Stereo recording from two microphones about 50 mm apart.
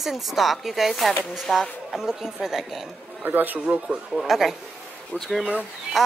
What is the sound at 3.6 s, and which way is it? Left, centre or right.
Speech, right.